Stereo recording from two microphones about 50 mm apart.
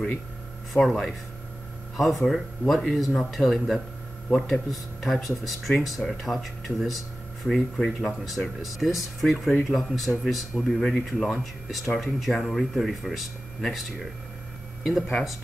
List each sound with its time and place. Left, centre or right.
0.7 s speech: centre
2.2 s speech: centre
9.4 s speech: centre
11.2 s speech: centre
11.8 s speech: centre
12.2 s speech: centre